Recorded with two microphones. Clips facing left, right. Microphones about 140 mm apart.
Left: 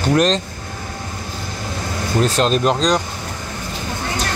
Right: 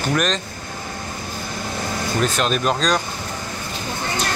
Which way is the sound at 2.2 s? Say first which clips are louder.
Left 4 dB; 30° left (ahead or behind).